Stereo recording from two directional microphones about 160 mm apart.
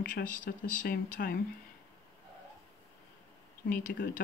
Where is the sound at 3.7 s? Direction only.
70° left (ahead or behind).